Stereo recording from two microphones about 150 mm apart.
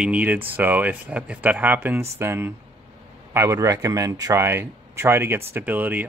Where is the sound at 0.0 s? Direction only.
10° right (ahead or behind).